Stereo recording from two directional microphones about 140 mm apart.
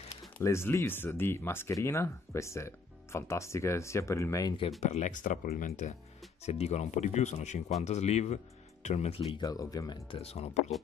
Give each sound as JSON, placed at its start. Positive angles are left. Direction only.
{"t": 0.4, "sound": "speech", "side_deg": 20}
{"t": 4.6, "sound": "speech", "side_deg": 50}
{"t": 6.4, "sound": "speech", "side_deg": 50}
{"t": 9.4, "sound": "speech", "side_deg": 25}
{"t": 10.1, "sound": "speech", "side_deg": 45}